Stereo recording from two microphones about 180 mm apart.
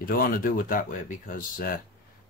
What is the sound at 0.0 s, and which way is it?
Speech, 55° left (ahead or behind).